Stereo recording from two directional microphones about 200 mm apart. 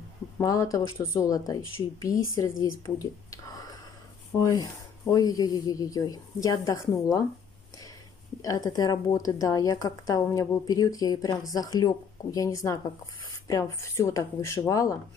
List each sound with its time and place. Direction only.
0.4 s a woman's voice: 15° left (ahead or behind)
8.4 s a woman's voice: 20° left (ahead or behind)